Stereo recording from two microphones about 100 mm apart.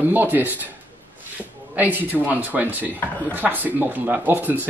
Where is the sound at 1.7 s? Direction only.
20° right (ahead or behind).